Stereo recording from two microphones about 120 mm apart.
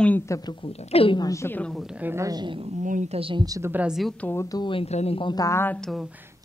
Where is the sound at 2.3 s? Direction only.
35° right (ahead or behind).